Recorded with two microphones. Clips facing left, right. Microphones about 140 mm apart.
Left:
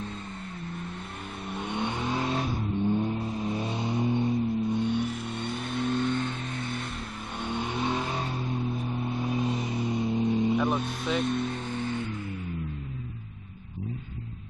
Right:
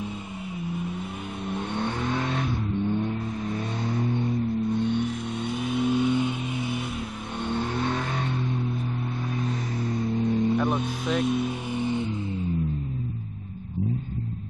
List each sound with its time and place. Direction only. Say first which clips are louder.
0.7 s vehicle: right 9 dB; 5° right (ahead or behind); by 3.2 s 10° left (ahead or behind)
3.2 s vehicle: even; 25° left (ahead or behind)
4.6 s vehicle: right 2 dB; 5° left (ahead or behind)
7.4 s vehicle: right 3 dB; 5° left (ahead or behind)
9.0 s vehicle: left 2 dB; 15° left (ahead or behind)
10.6 s vehicle: right 2 dB; centre (ahead or behind); by 12.2 s 20° right (ahead or behind)